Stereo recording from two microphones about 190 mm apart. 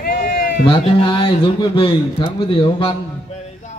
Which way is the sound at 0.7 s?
30° left (ahead or behind).